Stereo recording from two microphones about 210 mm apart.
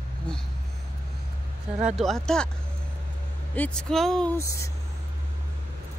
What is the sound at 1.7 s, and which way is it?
Speech, 5° right (ahead or behind).